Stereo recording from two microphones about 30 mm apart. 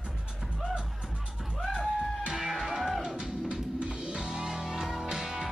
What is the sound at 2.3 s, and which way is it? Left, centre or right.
Music, centre.